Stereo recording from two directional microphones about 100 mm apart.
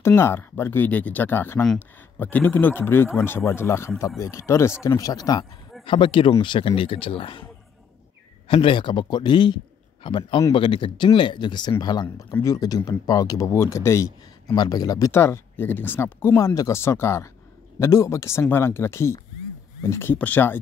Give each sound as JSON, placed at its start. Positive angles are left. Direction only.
{"t": 0.0, "sound": "speech", "side_deg": 25}
{"t": 5.9, "sound": "speech", "side_deg": 55}
{"t": 8.5, "sound": "speech", "side_deg": 60}
{"t": 14.5, "sound": "speech", "side_deg": 40}